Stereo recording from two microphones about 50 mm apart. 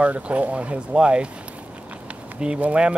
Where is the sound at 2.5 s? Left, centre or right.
Right.